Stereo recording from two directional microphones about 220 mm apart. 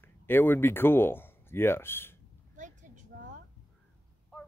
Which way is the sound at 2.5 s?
35° right (ahead or behind).